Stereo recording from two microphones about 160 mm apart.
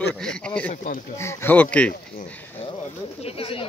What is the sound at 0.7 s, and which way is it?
Speech, 50° left (ahead or behind).